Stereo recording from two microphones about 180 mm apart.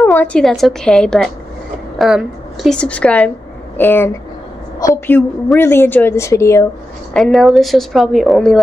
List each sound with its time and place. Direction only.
0.0 s a woman's voice: 10° left (ahead or behind)
7.2 s a woman's voice: centre (ahead or behind)